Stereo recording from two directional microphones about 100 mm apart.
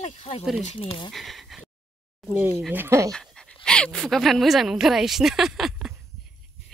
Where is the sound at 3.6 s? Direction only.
10° left (ahead or behind).